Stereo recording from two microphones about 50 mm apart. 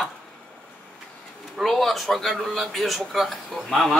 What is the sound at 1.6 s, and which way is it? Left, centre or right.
A man's voice, centre.